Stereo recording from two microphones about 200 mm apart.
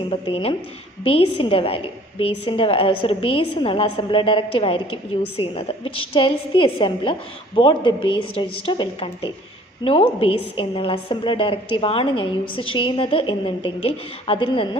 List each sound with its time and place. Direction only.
0.1 s a woman's voice: 30° left (ahead or behind)